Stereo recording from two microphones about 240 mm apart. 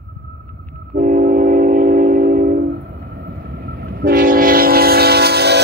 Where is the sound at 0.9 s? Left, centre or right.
Right.